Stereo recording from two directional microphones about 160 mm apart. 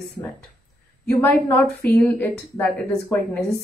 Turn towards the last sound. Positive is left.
turn(degrees=10)  # may be behind; listen again after turning